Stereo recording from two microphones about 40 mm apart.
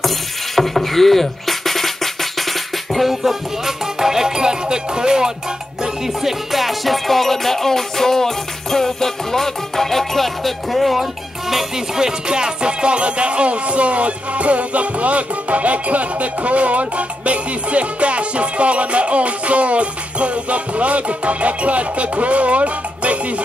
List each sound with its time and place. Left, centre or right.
0.6 s music: centre
2.9 s music: centre
6.2 s music: centre
11.5 s music: centre; by 23.1 s right